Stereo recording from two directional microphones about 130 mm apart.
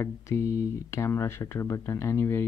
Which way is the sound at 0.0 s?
20° left (ahead or behind).